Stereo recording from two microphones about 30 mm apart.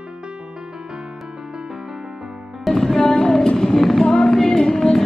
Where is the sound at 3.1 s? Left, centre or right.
Left.